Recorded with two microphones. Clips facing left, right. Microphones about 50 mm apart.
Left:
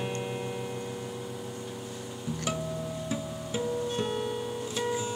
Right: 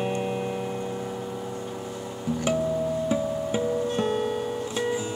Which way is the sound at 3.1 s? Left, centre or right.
Right.